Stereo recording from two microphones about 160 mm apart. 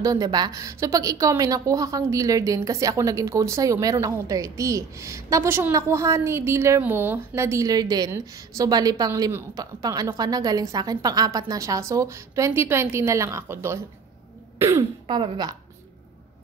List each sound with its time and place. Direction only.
0.0 s a woman's voice: 25° right (ahead or behind)
15.0 s a woman's voice: 30° right (ahead or behind)